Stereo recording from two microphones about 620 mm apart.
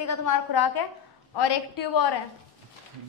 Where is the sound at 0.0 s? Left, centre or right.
Left.